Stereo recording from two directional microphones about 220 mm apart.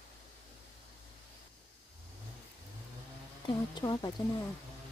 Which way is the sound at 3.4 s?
20° left (ahead or behind).